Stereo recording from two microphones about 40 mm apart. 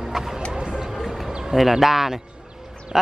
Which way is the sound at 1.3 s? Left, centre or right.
Centre.